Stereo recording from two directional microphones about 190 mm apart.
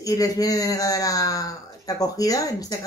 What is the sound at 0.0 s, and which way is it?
A man's voice, 20° left (ahead or behind).